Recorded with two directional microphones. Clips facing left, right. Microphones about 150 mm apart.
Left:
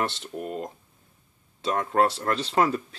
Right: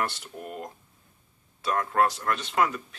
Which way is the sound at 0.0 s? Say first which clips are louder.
Left 3 dB; 25° left (ahead or behind).